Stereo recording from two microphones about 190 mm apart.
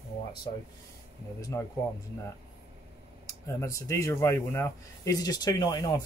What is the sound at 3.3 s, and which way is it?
Speech, 15° left (ahead or behind).